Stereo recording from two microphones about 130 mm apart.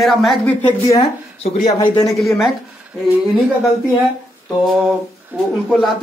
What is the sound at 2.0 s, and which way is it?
Speech, centre (ahead or behind).